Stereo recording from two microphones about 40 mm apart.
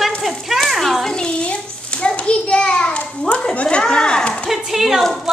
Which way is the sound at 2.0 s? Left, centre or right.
Left.